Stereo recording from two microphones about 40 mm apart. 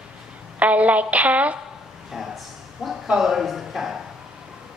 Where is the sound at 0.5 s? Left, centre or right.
Right.